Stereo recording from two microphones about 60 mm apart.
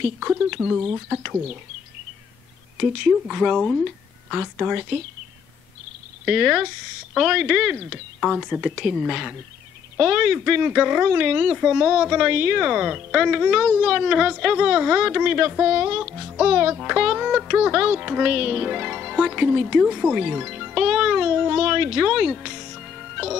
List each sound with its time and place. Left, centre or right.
0.0 s speech: centre
2.8 s a woman's voice: centre
4.3 s speech: centre
6.2 s a woman's voice: centre
9.9 s speech: centre